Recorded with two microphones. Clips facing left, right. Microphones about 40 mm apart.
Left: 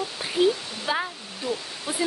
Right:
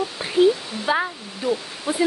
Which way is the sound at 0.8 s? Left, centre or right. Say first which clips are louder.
Right 5 dB; centre.